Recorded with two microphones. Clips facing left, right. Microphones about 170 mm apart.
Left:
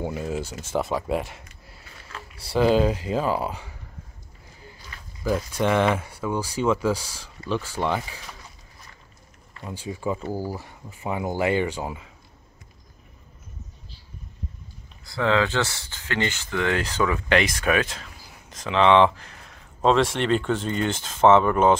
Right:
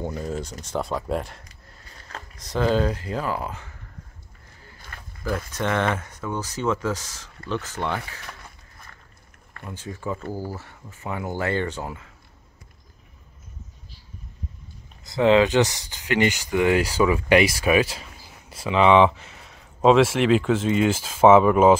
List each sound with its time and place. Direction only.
0.0 s speech: 10° left (ahead or behind)
4.9 s a sound: 50° right (ahead or behind)
5.5 s speech: 10° left (ahead or behind)
9.6 s speech: 15° left (ahead or behind)
15.0 s speech: 20° right (ahead or behind)